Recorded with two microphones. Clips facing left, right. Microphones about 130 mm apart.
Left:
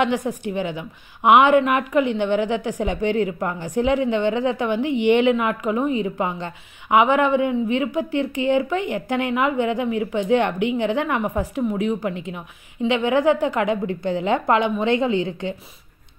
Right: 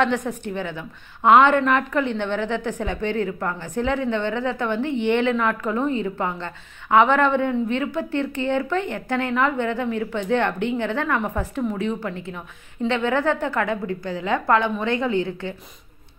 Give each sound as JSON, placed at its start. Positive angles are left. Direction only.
{"t": 0.0, "sound": "a woman's voice", "side_deg": 10}